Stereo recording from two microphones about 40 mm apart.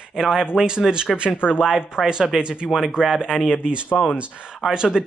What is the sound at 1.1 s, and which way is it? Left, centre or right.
Speech, right.